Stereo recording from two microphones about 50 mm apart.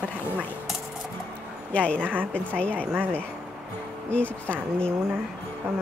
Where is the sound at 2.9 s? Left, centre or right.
Right.